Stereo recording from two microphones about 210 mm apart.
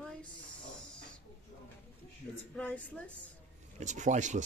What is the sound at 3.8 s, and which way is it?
Speech, 35° right (ahead or behind).